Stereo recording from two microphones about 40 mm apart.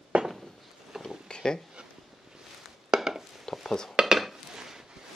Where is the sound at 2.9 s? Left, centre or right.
Centre.